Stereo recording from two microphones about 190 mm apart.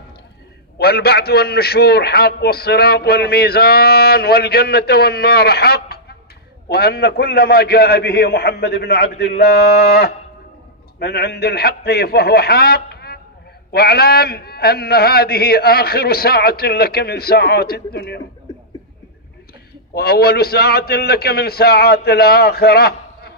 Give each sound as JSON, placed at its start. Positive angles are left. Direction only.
{"t": 0.7, "sound": "a man's voice", "side_deg": 55}
{"t": 19.9, "sound": "a man's voice", "side_deg": 55}